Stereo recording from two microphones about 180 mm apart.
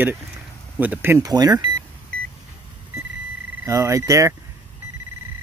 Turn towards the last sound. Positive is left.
turn(degrees=-15)  # may be behind; listen again after turning